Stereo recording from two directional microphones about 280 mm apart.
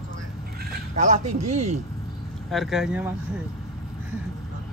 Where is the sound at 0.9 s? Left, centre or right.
Right.